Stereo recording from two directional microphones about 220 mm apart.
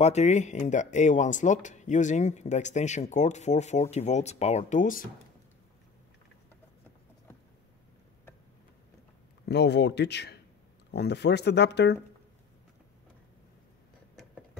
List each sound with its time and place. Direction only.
0.0 s speech: 30° left (ahead or behind)
9.5 s speech: 50° left (ahead or behind)
14.1 s tick-tock: centre (ahead or behind)